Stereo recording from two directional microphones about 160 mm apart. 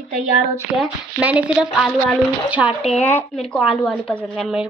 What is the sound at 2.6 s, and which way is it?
Speech, 40° left (ahead or behind).